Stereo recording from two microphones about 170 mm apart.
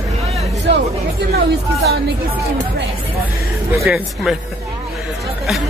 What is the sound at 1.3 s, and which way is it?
Speech, 65° right (ahead or behind).